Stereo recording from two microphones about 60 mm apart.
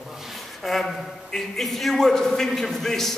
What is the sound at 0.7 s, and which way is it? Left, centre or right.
A man's voice, centre.